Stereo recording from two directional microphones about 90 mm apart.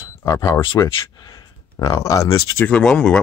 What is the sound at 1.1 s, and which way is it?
Speech, 50° left (ahead or behind).